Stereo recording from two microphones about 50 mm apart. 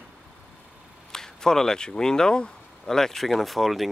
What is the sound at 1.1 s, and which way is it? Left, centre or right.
Speech, centre.